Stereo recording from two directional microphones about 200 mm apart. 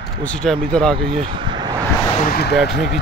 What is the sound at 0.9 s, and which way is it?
Speech, 25° right (ahead or behind).